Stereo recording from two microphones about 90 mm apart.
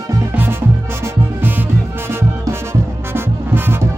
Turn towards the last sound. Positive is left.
turn(degrees=-25)  # may be behind; listen again after turning